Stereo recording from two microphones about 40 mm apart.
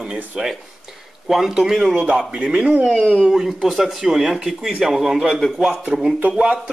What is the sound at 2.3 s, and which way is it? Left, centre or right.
Speech, right.